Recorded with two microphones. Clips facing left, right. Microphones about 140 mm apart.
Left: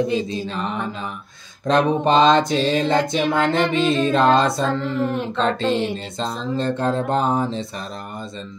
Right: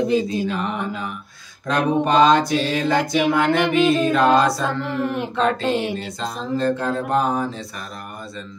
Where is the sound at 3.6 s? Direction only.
10° right (ahead or behind).